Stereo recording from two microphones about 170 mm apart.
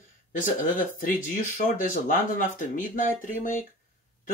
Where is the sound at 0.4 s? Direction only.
50° left (ahead or behind).